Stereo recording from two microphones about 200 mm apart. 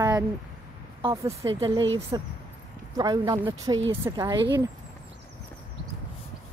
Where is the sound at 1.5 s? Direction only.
25° right (ahead or behind).